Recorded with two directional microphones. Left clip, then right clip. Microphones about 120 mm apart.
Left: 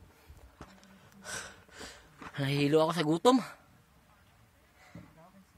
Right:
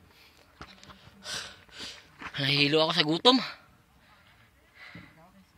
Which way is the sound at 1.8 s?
40° left (ahead or behind).